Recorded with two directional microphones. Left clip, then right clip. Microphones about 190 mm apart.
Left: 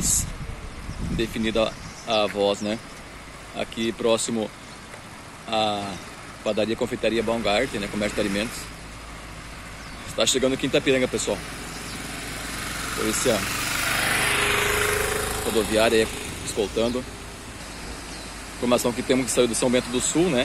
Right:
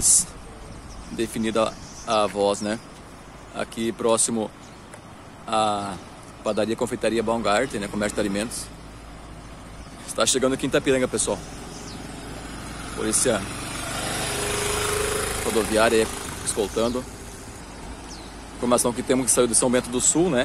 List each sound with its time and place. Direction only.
1.1 s speech: centre (ahead or behind)
5.5 s speech: 5° right (ahead or behind)
10.1 s speech: centre (ahead or behind)
12.9 s speech: centre (ahead or behind)
13.8 s a sound: 20° right (ahead or behind)
14.2 s vehicle: 35° right (ahead or behind)
15.7 s speech: centre (ahead or behind)
18.6 s speech: centre (ahead or behind)